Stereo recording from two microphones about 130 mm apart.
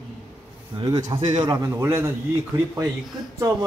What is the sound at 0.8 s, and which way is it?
Speech, 30° right (ahead or behind).